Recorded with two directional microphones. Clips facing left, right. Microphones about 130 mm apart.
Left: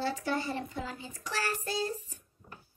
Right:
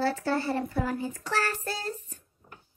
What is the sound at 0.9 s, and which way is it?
Child singing, 20° left (ahead or behind).